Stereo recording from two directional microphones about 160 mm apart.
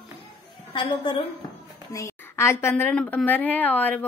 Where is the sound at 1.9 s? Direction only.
15° left (ahead or behind).